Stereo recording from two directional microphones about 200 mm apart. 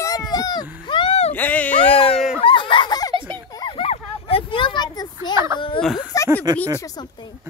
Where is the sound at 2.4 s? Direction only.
25° left (ahead or behind).